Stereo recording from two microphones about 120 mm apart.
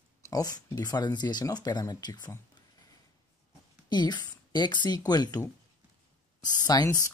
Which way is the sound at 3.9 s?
35° left (ahead or behind).